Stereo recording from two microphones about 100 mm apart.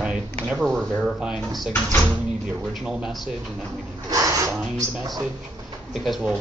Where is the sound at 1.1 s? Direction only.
10° right (ahead or behind).